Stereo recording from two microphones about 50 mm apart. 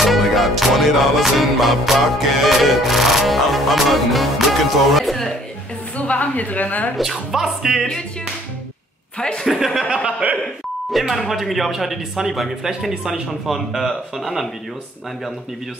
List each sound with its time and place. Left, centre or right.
0.0 s music: centre
5.9 s a woman's voice: left
7.0 s music: centre
9.4 s music: centre
10.2 s speech: right
10.9 s music: centre